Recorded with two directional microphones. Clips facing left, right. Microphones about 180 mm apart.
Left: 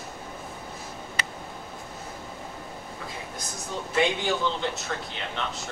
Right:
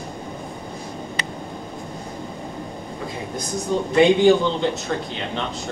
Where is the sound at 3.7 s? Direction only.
25° right (ahead or behind).